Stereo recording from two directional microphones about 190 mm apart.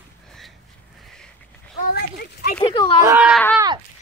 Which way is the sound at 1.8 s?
50° left (ahead or behind).